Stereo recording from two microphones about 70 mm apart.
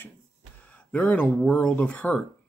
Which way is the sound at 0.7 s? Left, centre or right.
Left.